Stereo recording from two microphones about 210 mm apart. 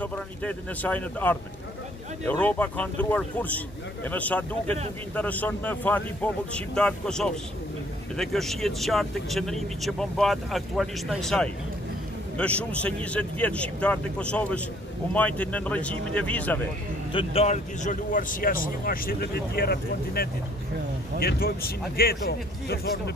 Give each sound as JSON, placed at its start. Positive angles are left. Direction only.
{"t": 0.0, "sound": "speech", "side_deg": 5}
{"t": 17.1, "sound": "speech", "side_deg": 25}